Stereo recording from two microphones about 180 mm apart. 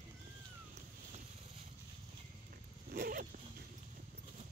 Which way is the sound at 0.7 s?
35° right (ahead or behind).